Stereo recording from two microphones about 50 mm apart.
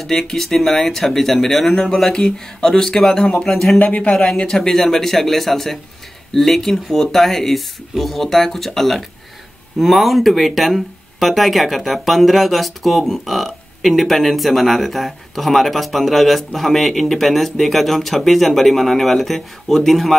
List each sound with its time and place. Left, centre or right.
0.0 s speech: centre
3.8 s speech: left
4.4 s speech: centre